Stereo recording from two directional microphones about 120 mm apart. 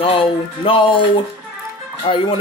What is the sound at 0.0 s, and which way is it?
Music, 50° left (ahead or behind).